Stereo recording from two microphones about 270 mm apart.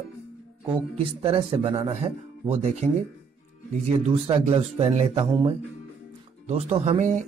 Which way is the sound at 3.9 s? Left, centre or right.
Right.